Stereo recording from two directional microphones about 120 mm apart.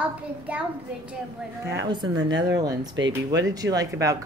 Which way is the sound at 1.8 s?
40° right (ahead or behind).